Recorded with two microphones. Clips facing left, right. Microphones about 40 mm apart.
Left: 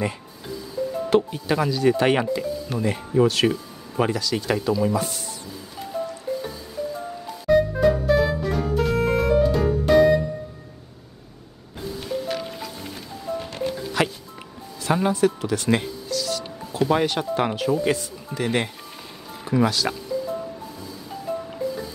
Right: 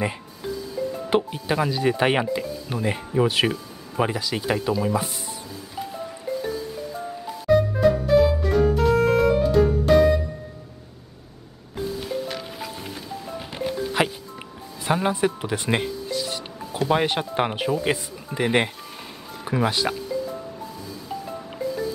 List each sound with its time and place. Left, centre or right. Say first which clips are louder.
1.1 s speech: left 2 dB; centre
7.4 s music: even; centre
12.1 s music: left 2 dB; centre
14.8 s speech: left 2 dB; centre